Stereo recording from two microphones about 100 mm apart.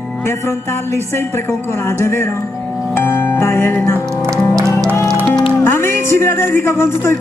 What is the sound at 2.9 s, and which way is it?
Music, 25° left (ahead or behind).